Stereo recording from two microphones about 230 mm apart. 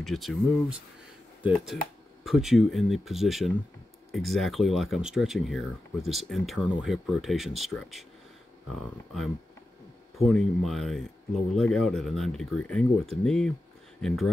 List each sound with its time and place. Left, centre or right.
0.0 s speech: centre
10.1 s speech: centre